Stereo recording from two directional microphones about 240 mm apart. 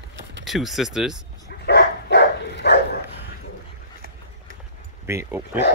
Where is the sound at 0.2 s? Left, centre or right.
Right.